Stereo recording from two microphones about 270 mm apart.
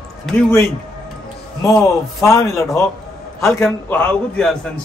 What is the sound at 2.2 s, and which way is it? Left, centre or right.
A man's voice, centre.